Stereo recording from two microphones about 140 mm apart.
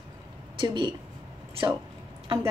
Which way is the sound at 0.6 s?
30° right (ahead or behind).